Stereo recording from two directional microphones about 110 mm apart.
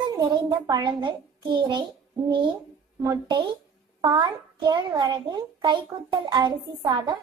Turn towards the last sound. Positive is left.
turn(degrees=-40)  # may be behind; listen again after turning